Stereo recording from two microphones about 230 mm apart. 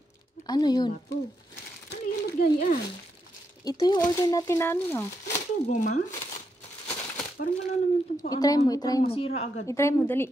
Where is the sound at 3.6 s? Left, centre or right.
Centre.